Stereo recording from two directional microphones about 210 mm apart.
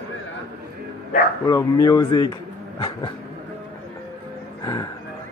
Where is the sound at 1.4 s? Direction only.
15° left (ahead or behind).